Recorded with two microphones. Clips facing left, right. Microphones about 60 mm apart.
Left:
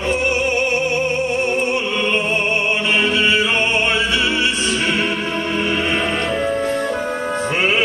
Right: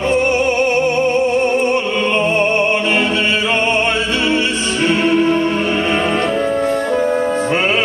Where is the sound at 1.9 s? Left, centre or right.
Right.